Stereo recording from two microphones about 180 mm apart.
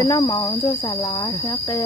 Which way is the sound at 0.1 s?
20° left (ahead or behind).